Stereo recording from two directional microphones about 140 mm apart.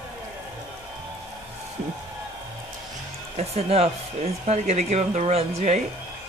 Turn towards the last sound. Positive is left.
turn(degrees=-50)  # may be behind; listen again after turning